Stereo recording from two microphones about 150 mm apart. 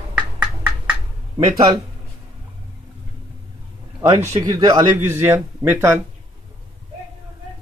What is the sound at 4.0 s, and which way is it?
Speech, 20° right (ahead or behind).